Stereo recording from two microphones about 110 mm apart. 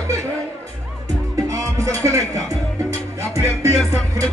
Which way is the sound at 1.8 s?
30° right (ahead or behind).